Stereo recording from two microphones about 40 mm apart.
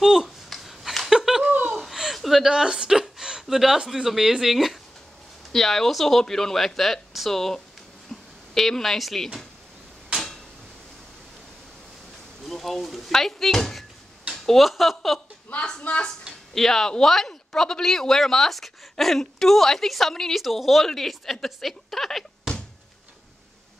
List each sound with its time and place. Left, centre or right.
0.0 s speech: centre
0.5 s a sound: centre
1.4 s laughter: right
1.8 s chuckle: centre
2.4 s speech: centre
5.5 s speech: centre
8.1 s a sound: centre
8.5 s a woman's voice: centre
12.4 s speech: centre
15.8 s a woman's voice: left
16.5 s a woman's voice: centre